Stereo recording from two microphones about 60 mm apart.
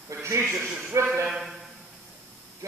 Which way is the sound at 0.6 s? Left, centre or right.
Centre.